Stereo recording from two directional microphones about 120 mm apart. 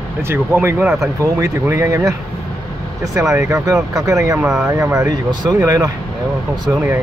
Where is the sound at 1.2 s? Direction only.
25° right (ahead or behind).